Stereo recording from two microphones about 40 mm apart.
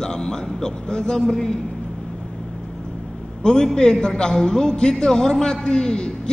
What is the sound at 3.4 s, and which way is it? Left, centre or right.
A man's voice, centre.